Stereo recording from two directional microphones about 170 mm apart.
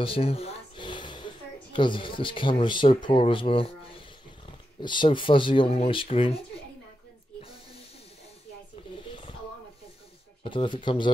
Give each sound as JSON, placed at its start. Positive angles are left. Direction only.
{"t": 0.0, "sound": "speech", "side_deg": 35}
{"t": 10.4, "sound": "speech", "side_deg": 30}